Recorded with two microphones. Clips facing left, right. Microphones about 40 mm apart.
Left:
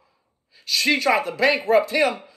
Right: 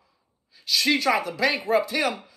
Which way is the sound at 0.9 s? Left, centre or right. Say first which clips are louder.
Left 3 dB; left.